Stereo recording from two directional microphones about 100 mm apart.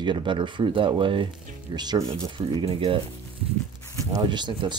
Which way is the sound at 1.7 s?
45° right (ahead or behind).